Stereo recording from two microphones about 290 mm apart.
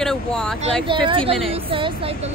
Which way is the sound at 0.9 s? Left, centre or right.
Centre.